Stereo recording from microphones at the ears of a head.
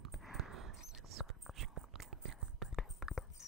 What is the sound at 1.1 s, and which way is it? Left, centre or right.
Whispering, right.